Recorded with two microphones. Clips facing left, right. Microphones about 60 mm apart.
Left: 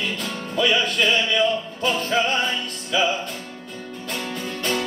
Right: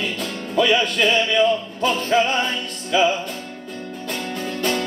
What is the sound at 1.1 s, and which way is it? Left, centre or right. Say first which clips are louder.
Music: right 4 dB; centre.